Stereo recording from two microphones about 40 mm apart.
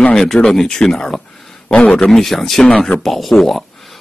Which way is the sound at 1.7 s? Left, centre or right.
Left.